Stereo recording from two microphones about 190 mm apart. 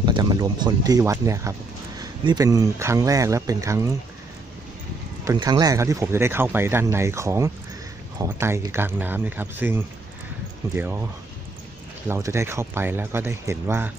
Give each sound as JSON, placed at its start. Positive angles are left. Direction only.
{"t": 0.0, "sound": "speech", "side_deg": -20}
{"t": 5.2, "sound": "speech", "side_deg": -20}
{"t": 12.1, "sound": "speech", "side_deg": -15}